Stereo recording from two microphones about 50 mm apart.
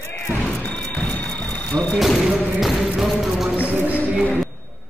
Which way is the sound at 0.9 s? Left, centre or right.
Left.